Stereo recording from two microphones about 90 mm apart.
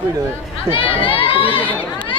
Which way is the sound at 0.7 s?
90° left.